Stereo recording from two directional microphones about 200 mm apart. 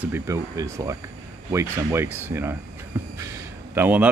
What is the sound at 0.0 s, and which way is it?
Speech, 10° right (ahead or behind).